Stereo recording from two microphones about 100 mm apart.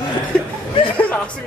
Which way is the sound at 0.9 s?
15° left (ahead or behind).